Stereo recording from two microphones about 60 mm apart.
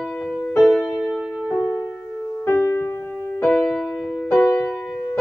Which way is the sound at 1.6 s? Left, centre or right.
Left.